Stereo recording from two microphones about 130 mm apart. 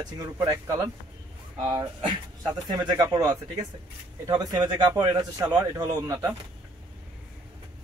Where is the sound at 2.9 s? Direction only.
25° right (ahead or behind).